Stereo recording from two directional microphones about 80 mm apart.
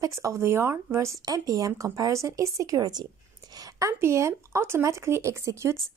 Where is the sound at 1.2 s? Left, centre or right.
Right.